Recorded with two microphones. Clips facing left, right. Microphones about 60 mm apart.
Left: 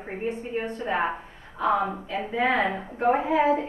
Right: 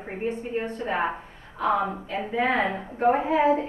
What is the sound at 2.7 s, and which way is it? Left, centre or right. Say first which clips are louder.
Speech: right 1 dB; centre.